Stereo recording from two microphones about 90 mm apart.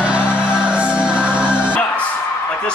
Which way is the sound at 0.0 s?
10° right (ahead or behind).